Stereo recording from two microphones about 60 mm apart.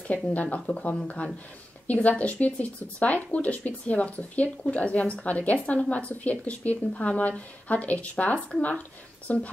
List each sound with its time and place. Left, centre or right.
0.3 s speech: left